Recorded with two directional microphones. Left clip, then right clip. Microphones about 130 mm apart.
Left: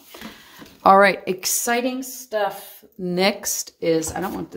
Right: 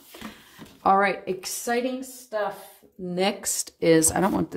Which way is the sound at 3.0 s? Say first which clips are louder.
Left 5 dB; 40° left (ahead or behind).